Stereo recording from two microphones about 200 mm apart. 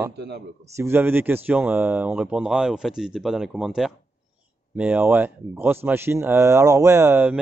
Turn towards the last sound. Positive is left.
turn(degrees=-5)  # may be behind; listen again after turning